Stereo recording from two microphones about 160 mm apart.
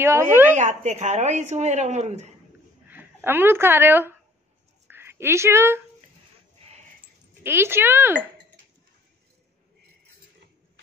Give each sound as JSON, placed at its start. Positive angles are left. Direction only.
{"t": 0.0, "sound": "speech", "side_deg": -15}
{"t": 0.6, "sound": "a woman's voice", "side_deg": -45}
{"t": 2.9, "sound": "speech", "side_deg": -10}
{"t": 4.8, "sound": "a sound", "side_deg": -15}
{"t": 7.4, "sound": "speech", "side_deg": -15}